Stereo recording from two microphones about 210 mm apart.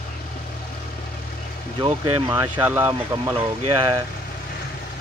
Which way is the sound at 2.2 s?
10° right (ahead or behind).